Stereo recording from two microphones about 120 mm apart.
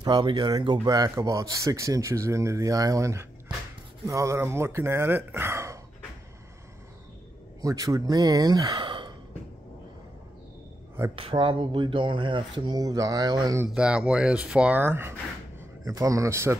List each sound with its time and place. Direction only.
0.0 s speech: 40° right (ahead or behind); by 5.8 s 20° right (ahead or behind)
7.6 s speech: 30° right (ahead or behind)
11.1 s speech: 45° right (ahead or behind)
13.7 s speech: 10° right (ahead or behind)